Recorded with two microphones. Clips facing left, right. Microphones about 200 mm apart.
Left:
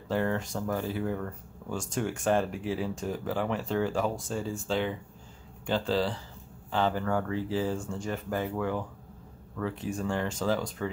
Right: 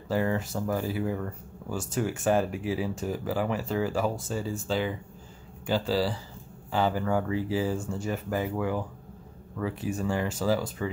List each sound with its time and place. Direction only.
0.1 s speech: 5° right (ahead or behind)